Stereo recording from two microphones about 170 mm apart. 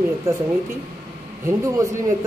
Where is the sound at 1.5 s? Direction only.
20° right (ahead or behind).